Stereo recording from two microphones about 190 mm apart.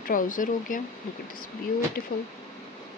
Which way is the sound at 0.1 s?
45° left (ahead or behind).